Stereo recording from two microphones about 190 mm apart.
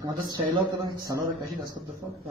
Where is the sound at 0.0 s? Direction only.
20° right (ahead or behind).